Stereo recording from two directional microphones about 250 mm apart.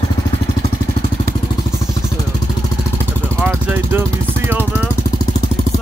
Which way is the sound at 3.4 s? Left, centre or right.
Centre.